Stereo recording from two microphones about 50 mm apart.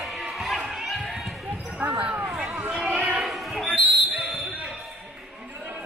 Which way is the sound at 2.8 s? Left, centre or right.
Right.